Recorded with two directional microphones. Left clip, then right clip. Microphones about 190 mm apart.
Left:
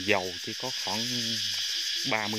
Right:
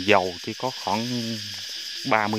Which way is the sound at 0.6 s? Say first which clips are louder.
Right 6 dB; 50° right (ahead or behind).